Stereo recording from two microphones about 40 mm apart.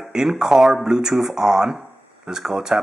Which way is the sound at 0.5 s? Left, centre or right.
Centre.